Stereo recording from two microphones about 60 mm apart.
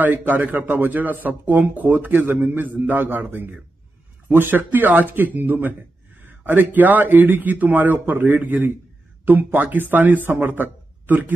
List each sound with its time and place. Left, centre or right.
0.0 s a man's voice: right